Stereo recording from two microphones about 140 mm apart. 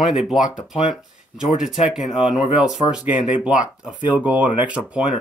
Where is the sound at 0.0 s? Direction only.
5° right (ahead or behind).